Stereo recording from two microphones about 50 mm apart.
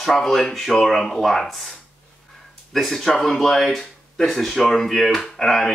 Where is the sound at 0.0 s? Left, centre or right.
Centre.